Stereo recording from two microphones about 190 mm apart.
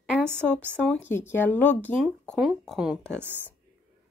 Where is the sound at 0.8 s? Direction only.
10° left (ahead or behind); by 3.5 s 10° right (ahead or behind).